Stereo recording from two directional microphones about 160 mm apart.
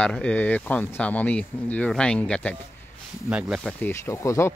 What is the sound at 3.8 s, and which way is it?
Speech, 15° left (ahead or behind).